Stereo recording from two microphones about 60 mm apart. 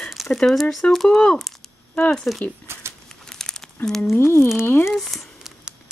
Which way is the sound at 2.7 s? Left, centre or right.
Right.